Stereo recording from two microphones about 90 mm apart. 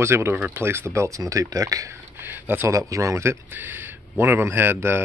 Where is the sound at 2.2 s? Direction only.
20° right (ahead or behind).